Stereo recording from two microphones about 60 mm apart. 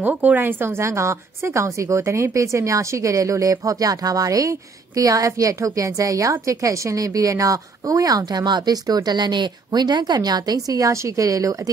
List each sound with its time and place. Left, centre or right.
0.0 s a woman's voice: right